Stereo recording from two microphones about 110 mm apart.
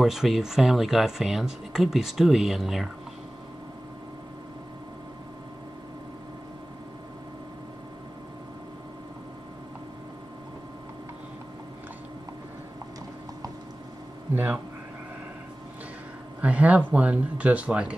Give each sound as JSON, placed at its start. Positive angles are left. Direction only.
{"t": 0.0, "sound": "speech", "side_deg": -5}
{"t": 14.3, "sound": "speech", "side_deg": -15}
{"t": 16.3, "sound": "speech", "side_deg": -10}